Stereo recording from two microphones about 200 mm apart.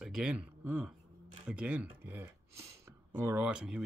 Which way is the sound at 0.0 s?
5° right (ahead or behind).